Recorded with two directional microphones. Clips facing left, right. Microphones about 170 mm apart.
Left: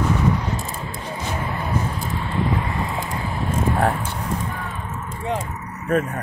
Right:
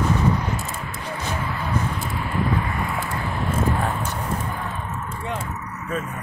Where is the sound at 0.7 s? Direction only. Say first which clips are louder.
Left 1 dB; 25° left (ahead or behind).